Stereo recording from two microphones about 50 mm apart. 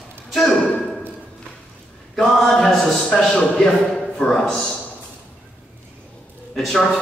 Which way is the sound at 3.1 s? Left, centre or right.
Centre.